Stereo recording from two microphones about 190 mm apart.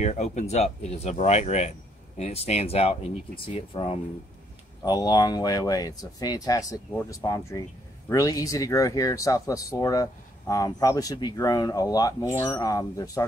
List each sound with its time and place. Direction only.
0.0 s speech: 35° left (ahead or behind); by 13.2 s 20° left (ahead or behind)